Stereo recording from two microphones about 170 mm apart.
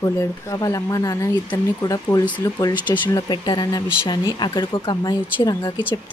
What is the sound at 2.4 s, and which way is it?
Speech, 25° left (ahead or behind).